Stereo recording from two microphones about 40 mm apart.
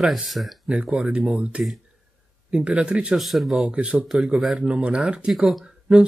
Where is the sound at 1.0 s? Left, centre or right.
Right.